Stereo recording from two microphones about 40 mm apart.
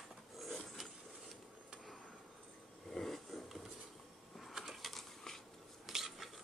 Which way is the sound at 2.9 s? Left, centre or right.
Centre.